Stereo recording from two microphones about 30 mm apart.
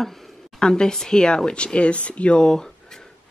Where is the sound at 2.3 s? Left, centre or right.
Left.